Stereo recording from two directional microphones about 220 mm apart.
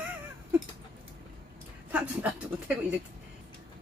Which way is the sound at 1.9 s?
5° right (ahead or behind).